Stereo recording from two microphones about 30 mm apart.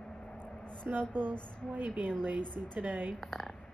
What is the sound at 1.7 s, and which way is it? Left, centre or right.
A woman's voice, right.